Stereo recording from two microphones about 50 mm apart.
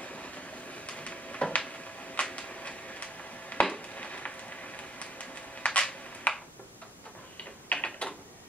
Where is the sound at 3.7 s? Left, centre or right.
Left.